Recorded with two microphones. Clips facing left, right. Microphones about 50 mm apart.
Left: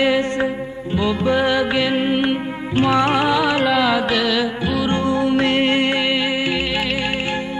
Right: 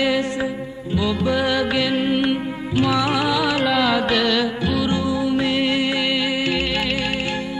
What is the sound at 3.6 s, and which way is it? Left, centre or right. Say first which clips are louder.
Music: left 2 dB; centre.